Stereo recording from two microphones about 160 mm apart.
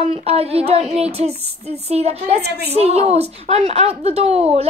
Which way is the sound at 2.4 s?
90° right.